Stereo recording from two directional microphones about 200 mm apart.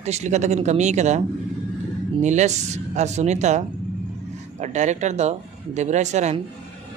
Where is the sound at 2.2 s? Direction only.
35° right (ahead or behind).